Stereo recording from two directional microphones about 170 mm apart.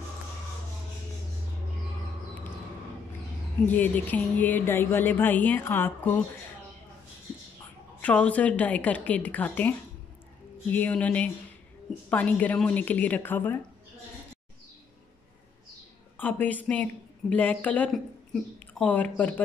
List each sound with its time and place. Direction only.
3.6 s speech: 10° left (ahead or behind)
8.0 s speech: 10° left (ahead or behind)
16.2 s speech: 10° left (ahead or behind)